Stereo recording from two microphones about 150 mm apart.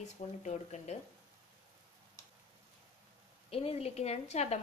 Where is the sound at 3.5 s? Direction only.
40° left (ahead or behind).